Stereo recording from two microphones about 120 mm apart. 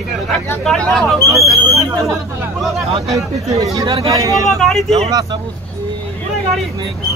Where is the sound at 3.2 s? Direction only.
25° right (ahead or behind).